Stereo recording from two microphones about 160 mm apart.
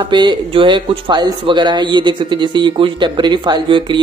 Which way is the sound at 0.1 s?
30° right (ahead or behind).